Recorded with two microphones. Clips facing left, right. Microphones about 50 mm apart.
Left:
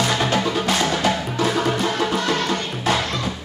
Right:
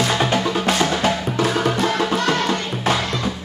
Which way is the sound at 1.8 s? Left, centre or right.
Centre.